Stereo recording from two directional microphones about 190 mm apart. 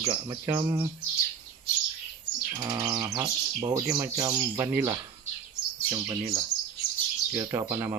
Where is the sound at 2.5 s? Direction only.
20° right (ahead or behind).